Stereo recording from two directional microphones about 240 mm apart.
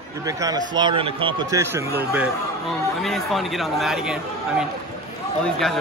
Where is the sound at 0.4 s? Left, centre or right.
Centre.